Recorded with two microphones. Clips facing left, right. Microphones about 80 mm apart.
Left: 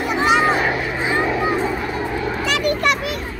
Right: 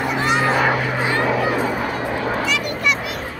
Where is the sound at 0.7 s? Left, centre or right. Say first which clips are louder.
Right 1 dB; right.